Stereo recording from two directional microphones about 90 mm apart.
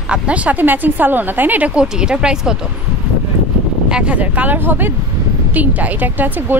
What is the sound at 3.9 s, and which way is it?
A woman's voice, 10° right (ahead or behind).